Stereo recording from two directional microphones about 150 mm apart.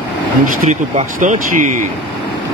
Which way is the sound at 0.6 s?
55° right (ahead or behind).